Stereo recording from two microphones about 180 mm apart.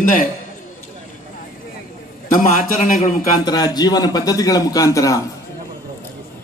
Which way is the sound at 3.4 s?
20° left (ahead or behind).